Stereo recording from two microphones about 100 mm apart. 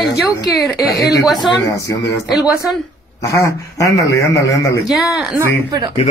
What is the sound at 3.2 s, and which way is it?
A man's voice, 30° left (ahead or behind).